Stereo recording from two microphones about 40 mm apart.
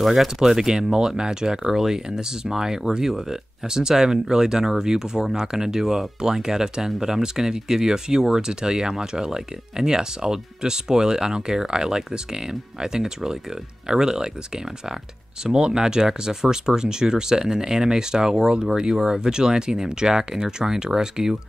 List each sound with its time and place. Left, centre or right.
0.0 s speech: centre
0.4 s speech: centre
15.4 s speech: centre